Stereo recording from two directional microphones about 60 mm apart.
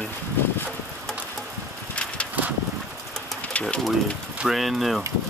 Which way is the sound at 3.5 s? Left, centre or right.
Left.